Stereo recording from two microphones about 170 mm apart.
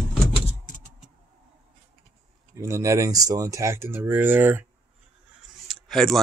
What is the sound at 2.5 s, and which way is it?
Speech, 15° right (ahead or behind).